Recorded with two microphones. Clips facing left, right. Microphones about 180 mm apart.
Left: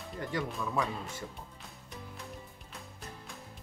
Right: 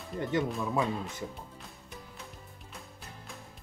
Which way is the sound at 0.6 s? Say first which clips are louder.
Right 3 dB; 20° right (ahead or behind).